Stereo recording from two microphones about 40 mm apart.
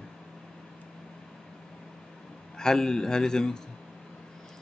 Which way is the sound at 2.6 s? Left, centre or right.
Centre.